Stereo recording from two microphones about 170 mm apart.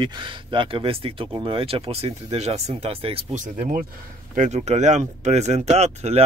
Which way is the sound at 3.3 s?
45° right (ahead or behind).